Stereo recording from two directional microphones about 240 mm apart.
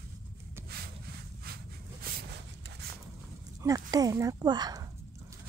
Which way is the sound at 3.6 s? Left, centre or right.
Centre.